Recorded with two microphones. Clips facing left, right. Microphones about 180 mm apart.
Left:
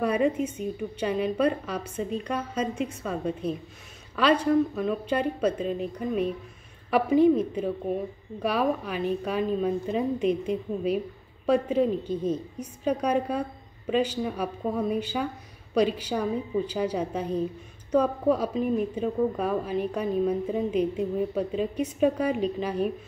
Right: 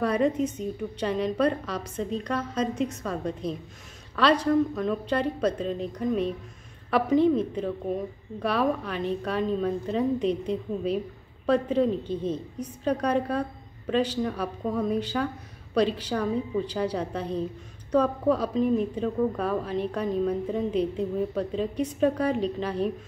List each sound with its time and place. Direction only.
0.0 s a woman's voice: 10° left (ahead or behind)